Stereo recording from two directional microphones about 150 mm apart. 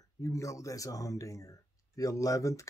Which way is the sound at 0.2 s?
20° left (ahead or behind).